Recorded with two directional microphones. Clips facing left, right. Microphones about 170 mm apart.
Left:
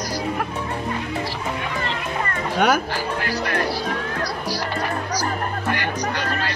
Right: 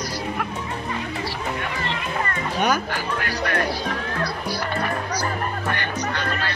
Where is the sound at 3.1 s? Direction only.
25° left (ahead or behind).